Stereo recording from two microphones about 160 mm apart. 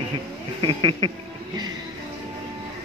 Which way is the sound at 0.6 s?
30° right (ahead or behind).